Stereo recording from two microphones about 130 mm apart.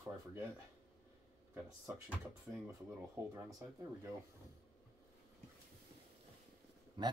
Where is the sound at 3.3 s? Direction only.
25° right (ahead or behind).